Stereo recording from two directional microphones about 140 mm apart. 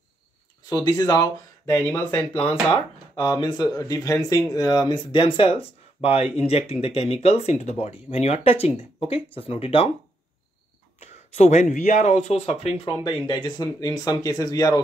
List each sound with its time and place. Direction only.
0.7 s speech: 25° left (ahead or behind)
1.9 s speech: 15° left (ahead or behind)
3.2 s speech: 30° left (ahead or behind)
11.1 s speech: 55° left (ahead or behind); by 14.8 s 25° left (ahead or behind)